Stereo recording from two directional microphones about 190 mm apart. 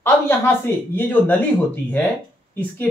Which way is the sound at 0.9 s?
10° left (ahead or behind).